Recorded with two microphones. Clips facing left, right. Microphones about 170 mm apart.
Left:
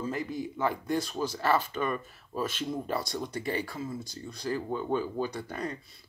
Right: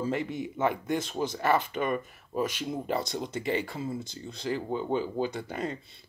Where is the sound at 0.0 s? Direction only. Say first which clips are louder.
Right 2 dB; 25° right (ahead or behind).